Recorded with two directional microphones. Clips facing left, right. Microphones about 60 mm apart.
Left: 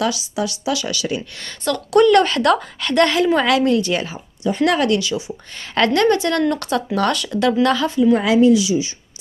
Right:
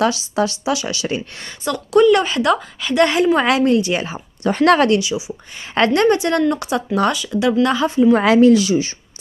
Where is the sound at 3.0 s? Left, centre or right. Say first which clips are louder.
Right 1 dB; right.